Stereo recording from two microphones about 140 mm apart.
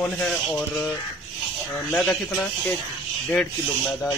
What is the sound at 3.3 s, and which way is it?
Speech, 5° left (ahead or behind).